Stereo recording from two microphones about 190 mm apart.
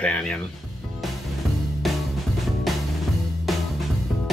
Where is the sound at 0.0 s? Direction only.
5° left (ahead or behind).